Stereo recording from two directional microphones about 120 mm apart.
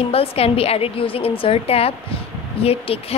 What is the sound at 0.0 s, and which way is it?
A woman's voice, 55° left (ahead or behind).